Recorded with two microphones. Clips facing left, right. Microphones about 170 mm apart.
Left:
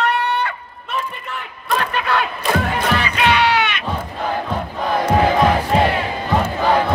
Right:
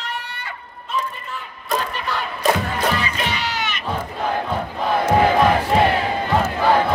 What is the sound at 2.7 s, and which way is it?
Crow, 65° left (ahead or behind).